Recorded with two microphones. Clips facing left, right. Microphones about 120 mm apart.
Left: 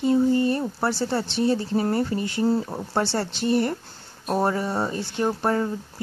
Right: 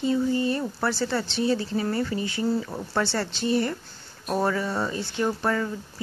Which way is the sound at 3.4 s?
55° left (ahead or behind).